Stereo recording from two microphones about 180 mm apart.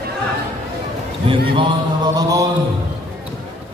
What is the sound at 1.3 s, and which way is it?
Music, 25° right (ahead or behind).